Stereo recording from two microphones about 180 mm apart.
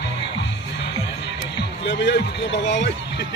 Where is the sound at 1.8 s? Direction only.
70° left (ahead or behind).